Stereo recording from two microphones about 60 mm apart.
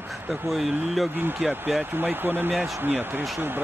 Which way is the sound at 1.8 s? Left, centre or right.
Right.